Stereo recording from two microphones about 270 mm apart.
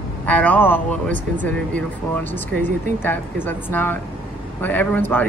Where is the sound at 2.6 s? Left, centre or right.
Centre.